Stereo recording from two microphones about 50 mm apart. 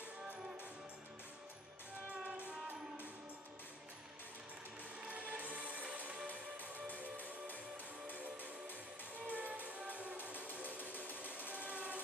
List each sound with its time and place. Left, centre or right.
2.2 s music: right
5.0 s music: right
7.7 s music: right